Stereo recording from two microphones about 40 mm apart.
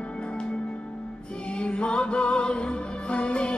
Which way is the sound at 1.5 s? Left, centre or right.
Left.